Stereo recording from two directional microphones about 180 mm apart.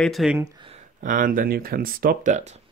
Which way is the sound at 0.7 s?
50° right (ahead or behind).